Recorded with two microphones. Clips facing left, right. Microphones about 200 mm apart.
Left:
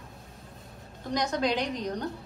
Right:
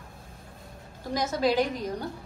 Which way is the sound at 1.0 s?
5° right (ahead or behind).